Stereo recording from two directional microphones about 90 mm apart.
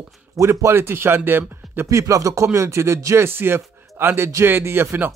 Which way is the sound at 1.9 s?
35° right (ahead or behind).